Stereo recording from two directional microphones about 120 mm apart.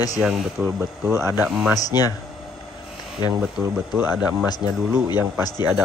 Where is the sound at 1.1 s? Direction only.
25° right (ahead or behind).